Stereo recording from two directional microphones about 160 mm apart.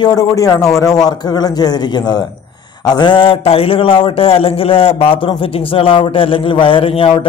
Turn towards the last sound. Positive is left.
turn(degrees=35)  # may be behind; listen again after turning